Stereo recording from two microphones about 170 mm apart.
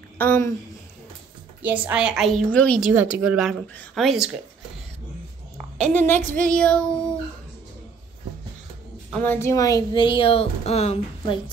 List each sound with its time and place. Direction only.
0.2 s a woman's voice: 15° left (ahead or behind)
1.6 s a woman's voice: 10° right (ahead or behind); by 2.8 s 5° left (ahead or behind)
2.8 s a woman's voice: 10° right (ahead or behind)
5.8 s a woman's voice: 10° left (ahead or behind)
9.2 s speech: 15° left (ahead or behind); by 11.3 s 40° left (ahead or behind)